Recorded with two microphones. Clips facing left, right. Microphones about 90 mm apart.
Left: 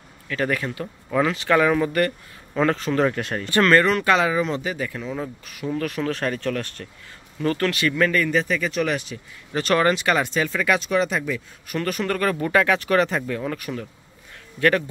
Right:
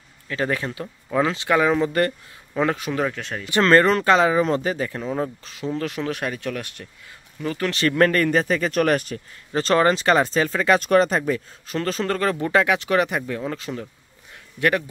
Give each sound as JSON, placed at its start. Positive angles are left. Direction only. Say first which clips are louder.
{"t": 0.3, "sound": "speech", "louder": "even", "side_deg": -25}
{"t": 2.5, "sound": "speech", "louder": "left 2 dB", "side_deg": -15}
{"t": 3.1, "sound": "speech", "louder": "left 4 dB", "side_deg": 0}
{"t": 3.4, "sound": "speech", "louder": "even", "side_deg": -20}
{"t": 3.7, "sound": "speech", "louder": "right 4 dB", "side_deg": -35}
{"t": 7.7, "sound": "speech", "louder": "right 2 dB", "side_deg": -40}
{"t": 9.5, "sound": "speech", "louder": "right 1 dB", "side_deg": -30}
{"t": 10.8, "sound": "speech", "louder": "right 4 dB", "side_deg": -45}
{"t": 11.6, "sound": "speech", "louder": "even", "side_deg": -30}